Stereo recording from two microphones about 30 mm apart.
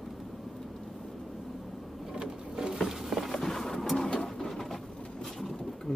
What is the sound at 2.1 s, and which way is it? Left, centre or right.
Sewing machine, right.